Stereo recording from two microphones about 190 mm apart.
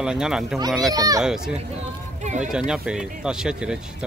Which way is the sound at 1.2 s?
5° right (ahead or behind).